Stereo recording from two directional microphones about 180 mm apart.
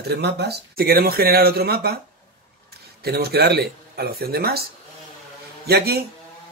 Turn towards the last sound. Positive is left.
turn(degrees=-65)  # may be behind; listen again after turning